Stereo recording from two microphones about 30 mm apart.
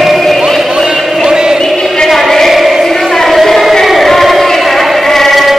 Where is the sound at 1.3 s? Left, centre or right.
Right.